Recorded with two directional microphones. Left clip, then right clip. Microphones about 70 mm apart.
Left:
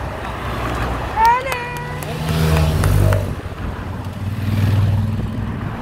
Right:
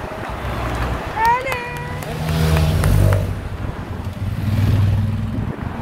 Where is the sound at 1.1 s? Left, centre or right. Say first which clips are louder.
Left 3 dB; left.